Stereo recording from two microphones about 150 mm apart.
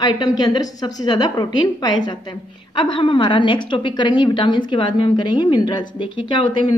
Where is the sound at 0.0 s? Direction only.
30° left (ahead or behind).